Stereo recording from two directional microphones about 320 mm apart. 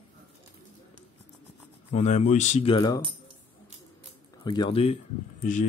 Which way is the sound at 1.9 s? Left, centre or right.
Left.